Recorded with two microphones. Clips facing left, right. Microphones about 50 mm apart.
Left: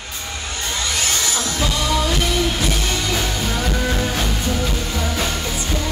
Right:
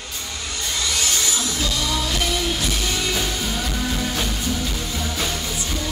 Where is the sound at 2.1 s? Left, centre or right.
Centre.